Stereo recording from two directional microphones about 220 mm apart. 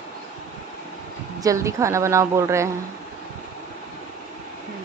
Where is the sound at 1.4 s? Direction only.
15° right (ahead or behind).